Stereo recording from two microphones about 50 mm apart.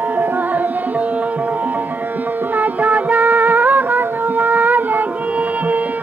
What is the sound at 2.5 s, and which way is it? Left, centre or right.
Music, right.